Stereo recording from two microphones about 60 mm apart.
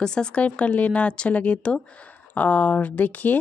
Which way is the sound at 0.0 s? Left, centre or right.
Centre.